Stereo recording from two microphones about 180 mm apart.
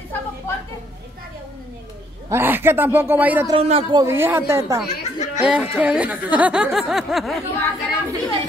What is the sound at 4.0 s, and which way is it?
Speech, 15° right (ahead or behind).